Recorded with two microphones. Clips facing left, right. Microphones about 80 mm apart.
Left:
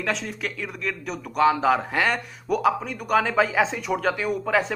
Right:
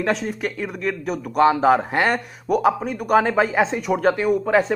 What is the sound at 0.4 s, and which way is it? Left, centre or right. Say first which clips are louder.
A man's voice: right 5 dB; right.